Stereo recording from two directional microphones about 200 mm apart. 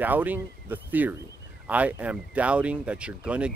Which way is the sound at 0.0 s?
10° right (ahead or behind).